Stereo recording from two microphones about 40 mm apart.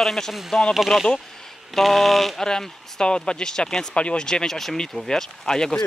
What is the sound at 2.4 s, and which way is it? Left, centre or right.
Speech, centre.